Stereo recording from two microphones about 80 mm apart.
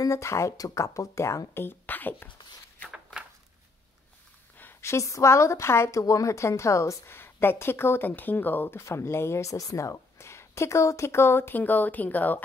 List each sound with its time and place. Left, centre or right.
0.0 s a woman's voice: left
1.5 s a woman's voice: left
4.6 s a sound: left
4.9 s a woman's voice: left